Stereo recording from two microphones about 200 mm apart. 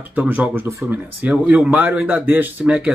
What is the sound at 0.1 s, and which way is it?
Speech, 10° right (ahead or behind).